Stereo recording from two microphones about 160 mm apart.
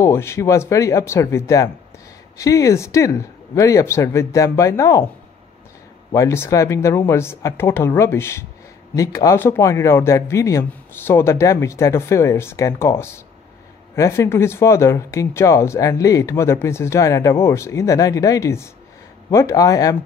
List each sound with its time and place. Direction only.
0.0 s speech: 15° left (ahead or behind)
6.1 s speech: 15° left (ahead or behind)